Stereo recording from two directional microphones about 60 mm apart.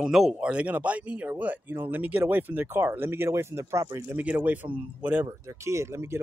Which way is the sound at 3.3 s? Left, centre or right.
Right.